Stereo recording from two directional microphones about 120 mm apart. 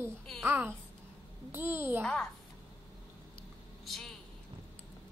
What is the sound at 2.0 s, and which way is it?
Speech, 5° left (ahead or behind).